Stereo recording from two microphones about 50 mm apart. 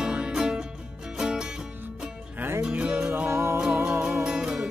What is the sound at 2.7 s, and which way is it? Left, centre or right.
Music, right.